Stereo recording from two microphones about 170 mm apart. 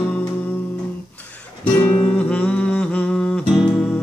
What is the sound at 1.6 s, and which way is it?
Music, 10° left (ahead or behind).